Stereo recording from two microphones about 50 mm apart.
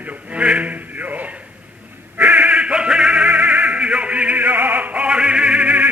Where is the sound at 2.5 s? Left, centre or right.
Right.